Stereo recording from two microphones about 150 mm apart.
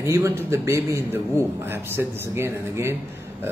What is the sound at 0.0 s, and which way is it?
A man's voice, 15° right (ahead or behind).